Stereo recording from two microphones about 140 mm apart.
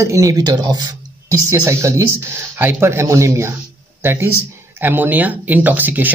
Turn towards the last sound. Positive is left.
turn(degrees=-10)  # may be behind; listen again after turning